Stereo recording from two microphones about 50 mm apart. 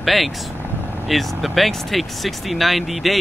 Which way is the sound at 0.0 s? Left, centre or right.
Centre.